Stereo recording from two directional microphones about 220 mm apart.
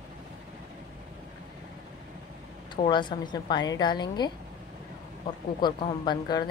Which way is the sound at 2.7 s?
20° left (ahead or behind).